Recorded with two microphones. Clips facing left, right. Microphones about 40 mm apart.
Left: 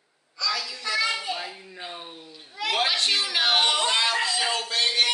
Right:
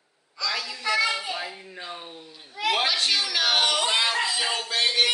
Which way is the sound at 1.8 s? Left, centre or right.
Centre.